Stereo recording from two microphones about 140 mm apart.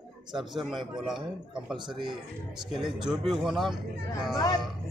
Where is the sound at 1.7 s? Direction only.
35° right (ahead or behind).